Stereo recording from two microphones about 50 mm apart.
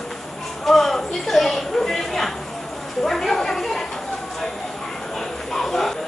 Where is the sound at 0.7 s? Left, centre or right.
Centre.